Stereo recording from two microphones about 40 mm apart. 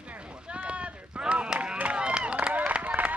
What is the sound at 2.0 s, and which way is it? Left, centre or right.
Run, right.